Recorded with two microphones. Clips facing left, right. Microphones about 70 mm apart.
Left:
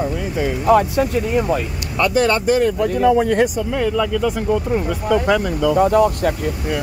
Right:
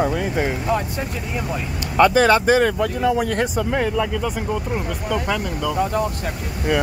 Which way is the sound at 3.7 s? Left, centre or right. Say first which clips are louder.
Left 2 dB; centre.